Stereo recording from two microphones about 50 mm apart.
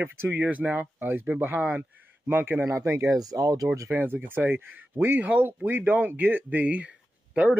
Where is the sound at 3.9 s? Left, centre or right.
Right.